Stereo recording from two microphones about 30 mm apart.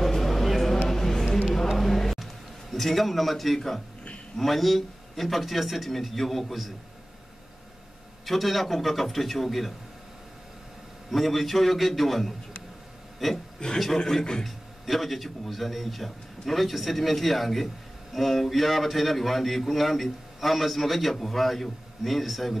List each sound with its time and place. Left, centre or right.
0.0 s a sound: centre
2.7 s a man's voice: centre
8.3 s a man's voice: centre
11.1 s a man's voice: centre
13.6 s a man's voice: left
13.9 s a man's voice: centre
14.4 s a man's voice: centre